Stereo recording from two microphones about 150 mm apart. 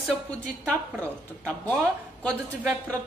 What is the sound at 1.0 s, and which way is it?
A woman's voice, 10° left (ahead or behind).